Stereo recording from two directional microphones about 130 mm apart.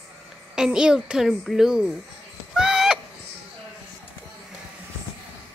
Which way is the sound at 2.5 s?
5° right (ahead or behind).